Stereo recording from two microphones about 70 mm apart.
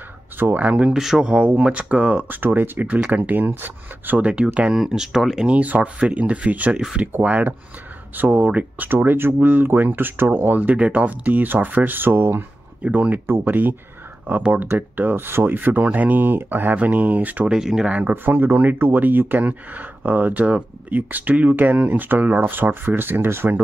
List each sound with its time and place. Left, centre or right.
0.4 s speech: right
0.9 s speech: centre
4.7 s speech: centre; by 12.4 s right
12.8 s speech: right
17.5 s speech: centre
18.1 s speech: right